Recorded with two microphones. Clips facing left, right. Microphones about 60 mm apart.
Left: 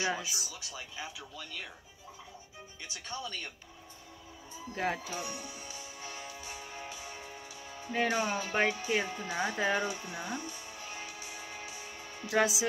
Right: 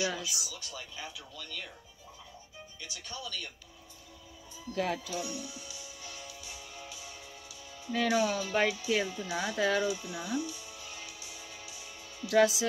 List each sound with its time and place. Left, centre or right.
0.0 s speech: left
0.6 s speech: centre
2.8 s speech: left
4.7 s music: left